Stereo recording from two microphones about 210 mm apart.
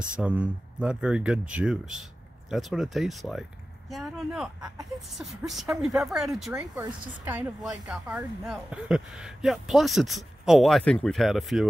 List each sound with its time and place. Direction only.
0.1 s speech: 5° right (ahead or behind)